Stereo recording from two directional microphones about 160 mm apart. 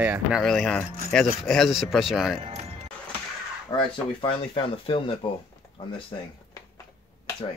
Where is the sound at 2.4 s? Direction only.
40° right (ahead or behind).